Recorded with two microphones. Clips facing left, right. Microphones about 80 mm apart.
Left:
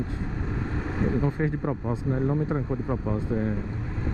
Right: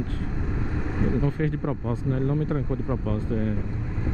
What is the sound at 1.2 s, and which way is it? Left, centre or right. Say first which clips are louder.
Speech: even; centre.